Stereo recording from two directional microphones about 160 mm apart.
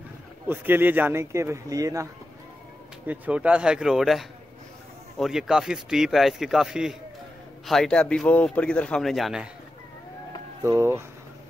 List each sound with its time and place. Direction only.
0.5 s a man's voice: 10° right (ahead or behind)
3.1 s a man's voice: 10° right (ahead or behind)
10.6 s a man's voice: 15° right (ahead or behind)